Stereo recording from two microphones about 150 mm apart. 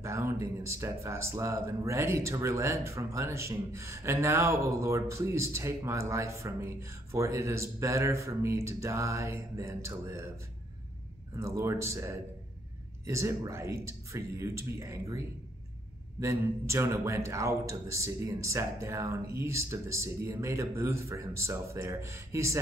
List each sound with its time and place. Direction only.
0.0 s speech: 20° right (ahead or behind)
11.3 s speech: 20° right (ahead or behind)